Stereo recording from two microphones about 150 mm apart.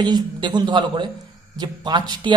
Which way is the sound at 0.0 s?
30° right (ahead or behind).